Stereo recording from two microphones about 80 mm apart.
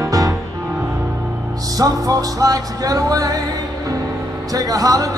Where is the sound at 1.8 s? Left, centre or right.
Right.